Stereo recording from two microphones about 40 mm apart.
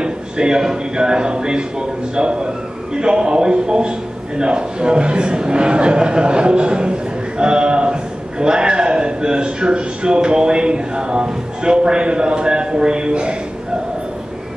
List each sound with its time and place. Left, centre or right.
0.0 s a man's voice: centre